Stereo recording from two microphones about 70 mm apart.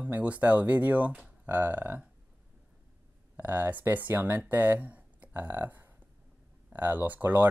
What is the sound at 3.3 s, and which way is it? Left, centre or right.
Speech, right.